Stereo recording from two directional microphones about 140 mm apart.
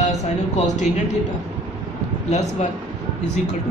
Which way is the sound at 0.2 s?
55° left (ahead or behind).